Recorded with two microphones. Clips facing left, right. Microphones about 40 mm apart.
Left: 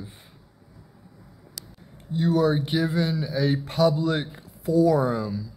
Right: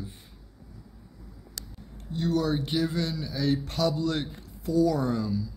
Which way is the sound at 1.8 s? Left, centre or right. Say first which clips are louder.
Left 5 dB; centre.